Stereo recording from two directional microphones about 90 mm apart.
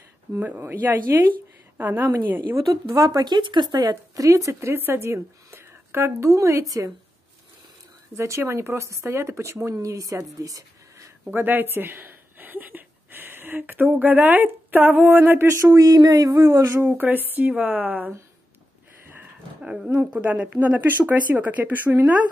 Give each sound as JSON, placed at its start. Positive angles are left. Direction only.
{"t": 0.3, "sound": "speech", "side_deg": -20}
{"t": 2.7, "sound": "speech", "side_deg": -45}
{"t": 8.2, "sound": "speech", "side_deg": -30}
{"t": 11.2, "sound": "speech", "side_deg": -20}
{"t": 15.5, "sound": "speech", "side_deg": -40}
{"t": 16.4, "sound": "speech", "side_deg": -30}
{"t": 19.6, "sound": "speech", "side_deg": -10}